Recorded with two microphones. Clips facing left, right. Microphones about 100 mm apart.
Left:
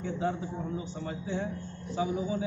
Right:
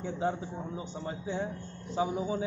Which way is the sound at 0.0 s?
25° right (ahead or behind).